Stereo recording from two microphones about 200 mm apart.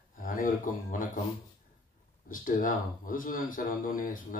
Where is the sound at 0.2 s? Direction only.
45° left (ahead or behind).